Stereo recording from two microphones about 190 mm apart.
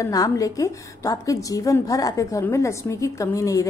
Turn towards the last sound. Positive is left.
turn(degrees=15)  # may be behind; listen again after turning